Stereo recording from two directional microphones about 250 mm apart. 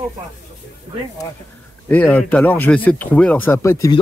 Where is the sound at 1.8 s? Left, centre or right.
Centre.